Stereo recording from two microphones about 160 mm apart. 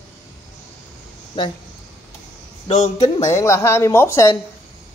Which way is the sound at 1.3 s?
30° left (ahead or behind).